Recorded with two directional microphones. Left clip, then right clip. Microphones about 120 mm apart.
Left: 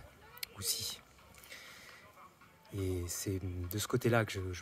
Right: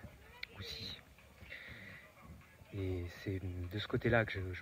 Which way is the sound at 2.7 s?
45° left (ahead or behind).